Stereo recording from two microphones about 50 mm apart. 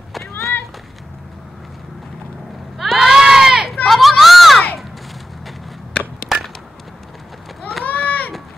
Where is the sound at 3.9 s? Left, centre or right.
Centre.